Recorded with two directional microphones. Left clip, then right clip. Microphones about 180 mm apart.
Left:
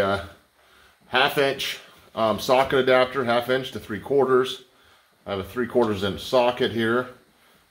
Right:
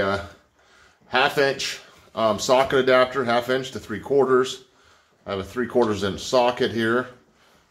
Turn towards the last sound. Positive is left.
turn(degrees=15)  # may be behind; listen again after turning